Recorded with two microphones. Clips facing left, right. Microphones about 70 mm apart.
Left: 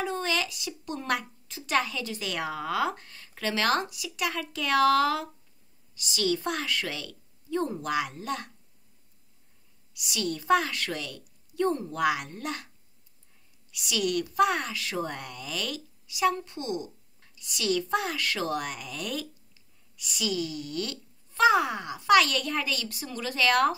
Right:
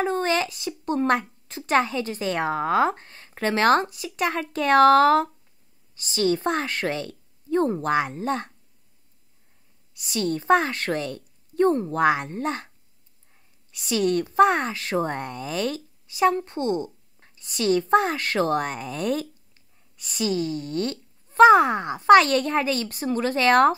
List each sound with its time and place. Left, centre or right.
0.0 s a woman's voice: right
9.9 s a woman's voice: right